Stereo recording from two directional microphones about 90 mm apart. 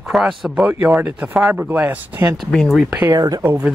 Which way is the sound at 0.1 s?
5° right (ahead or behind).